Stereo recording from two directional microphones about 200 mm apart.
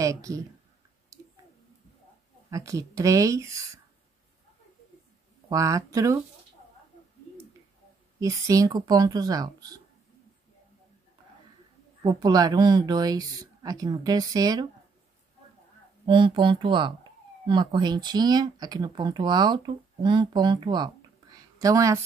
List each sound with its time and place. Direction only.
0.0 s speech: 15° right (ahead or behind)
1.1 s a sound: 15° right (ahead or behind)
2.5 s speech: 15° right (ahead or behind)
5.5 s speech: 15° right (ahead or behind)
8.2 s speech: 15° right (ahead or behind)
12.0 s speech: 20° right (ahead or behind)
16.1 s speech: 25° right (ahead or behind)